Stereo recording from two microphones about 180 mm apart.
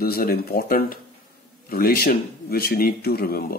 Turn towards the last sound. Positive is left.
turn(degrees=55)  # may be behind; listen again after turning